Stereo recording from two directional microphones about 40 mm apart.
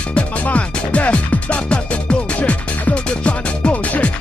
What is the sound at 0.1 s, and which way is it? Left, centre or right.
Music, left.